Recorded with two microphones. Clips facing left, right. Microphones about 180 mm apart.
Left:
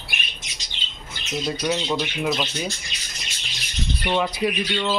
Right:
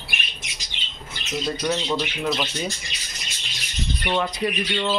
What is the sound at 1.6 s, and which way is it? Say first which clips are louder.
Speech: even; 5° left (ahead or behind).